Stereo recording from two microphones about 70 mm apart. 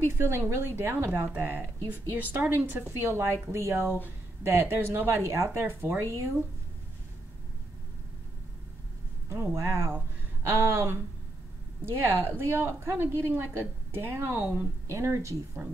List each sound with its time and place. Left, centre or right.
0.0 s a woman's voice: right
9.3 s a woman's voice: right